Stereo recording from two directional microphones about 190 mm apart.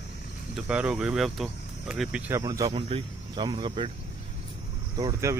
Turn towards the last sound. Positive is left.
turn(degrees=-20)  # may be behind; listen again after turning